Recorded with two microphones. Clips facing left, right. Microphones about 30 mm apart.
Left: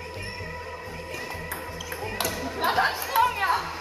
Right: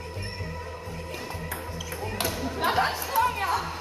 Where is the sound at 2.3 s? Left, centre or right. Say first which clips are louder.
Even; centre.